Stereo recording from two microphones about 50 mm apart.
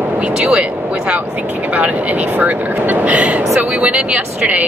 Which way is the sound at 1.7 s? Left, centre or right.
Right.